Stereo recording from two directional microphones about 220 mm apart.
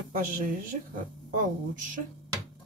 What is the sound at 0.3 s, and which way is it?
Speech, 35° right (ahead or behind).